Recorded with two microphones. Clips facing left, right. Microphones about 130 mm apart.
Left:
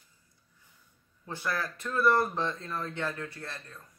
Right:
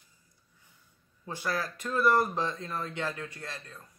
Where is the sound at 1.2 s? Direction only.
15° right (ahead or behind).